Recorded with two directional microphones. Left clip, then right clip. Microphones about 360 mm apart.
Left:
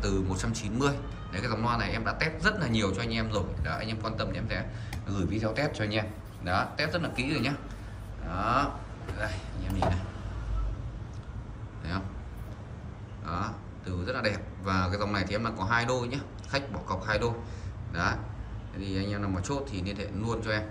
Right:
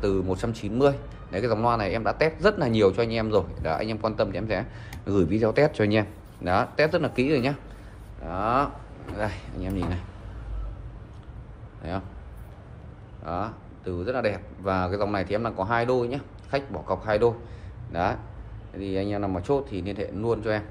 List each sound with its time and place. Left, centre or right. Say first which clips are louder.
0.0 s a man's voice: right 6 dB; centre
11.8 s speech: right 4 dB; centre
13.2 s a man's voice: right 4 dB; centre